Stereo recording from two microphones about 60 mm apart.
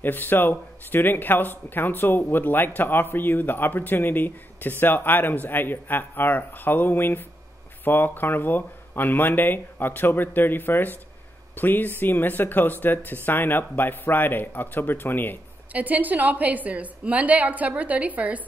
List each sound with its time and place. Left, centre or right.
0.0 s speech: left
15.7 s a woman's voice: right